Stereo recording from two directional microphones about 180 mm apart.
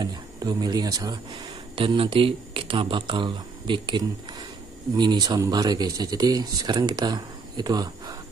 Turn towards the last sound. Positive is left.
turn(degrees=-20)  # may be behind; listen again after turning